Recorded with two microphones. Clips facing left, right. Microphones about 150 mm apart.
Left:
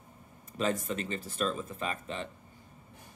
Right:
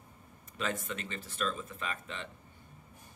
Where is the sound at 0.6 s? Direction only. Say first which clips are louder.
Left 5 dB; 35° left (ahead or behind).